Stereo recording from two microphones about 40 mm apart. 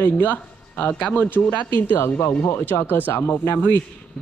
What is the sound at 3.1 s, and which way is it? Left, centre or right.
Speech, left.